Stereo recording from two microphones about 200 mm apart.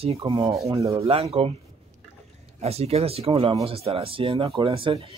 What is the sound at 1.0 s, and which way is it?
Speech, 30° right (ahead or behind).